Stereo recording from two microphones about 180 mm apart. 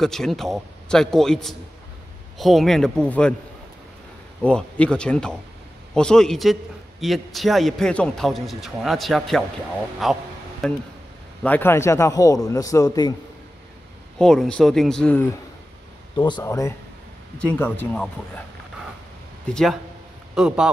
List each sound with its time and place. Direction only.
0.0 s a man's voice: centre (ahead or behind)
4.5 s a man's voice: 5° left (ahead or behind)
11.4 s a man's voice: 10° left (ahead or behind)
14.1 s a man's voice: 5° left (ahead or behind)
16.2 s a man's voice: 25° left (ahead or behind)
19.4 s a man's voice: centre (ahead or behind)